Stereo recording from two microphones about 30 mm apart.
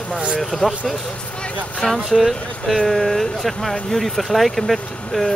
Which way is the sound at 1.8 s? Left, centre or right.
Centre.